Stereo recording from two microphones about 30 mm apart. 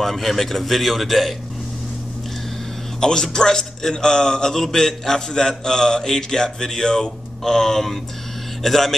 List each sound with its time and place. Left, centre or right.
0.0 s a man's voice: centre
3.0 s a man's voice: left